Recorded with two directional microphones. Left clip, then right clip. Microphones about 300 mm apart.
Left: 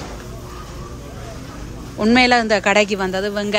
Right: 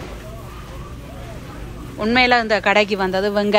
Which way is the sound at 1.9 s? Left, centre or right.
Centre.